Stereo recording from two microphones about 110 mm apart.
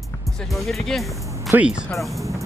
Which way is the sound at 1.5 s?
10° right (ahead or behind).